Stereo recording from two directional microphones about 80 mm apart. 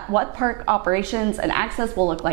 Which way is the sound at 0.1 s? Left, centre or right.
Right.